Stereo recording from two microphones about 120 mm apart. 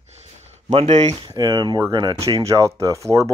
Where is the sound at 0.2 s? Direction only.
65° right (ahead or behind).